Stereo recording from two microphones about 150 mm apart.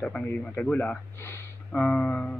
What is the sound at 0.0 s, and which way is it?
Speech, 10° left (ahead or behind).